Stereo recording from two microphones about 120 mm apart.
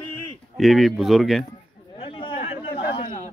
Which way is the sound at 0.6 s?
Centre (ahead or behind).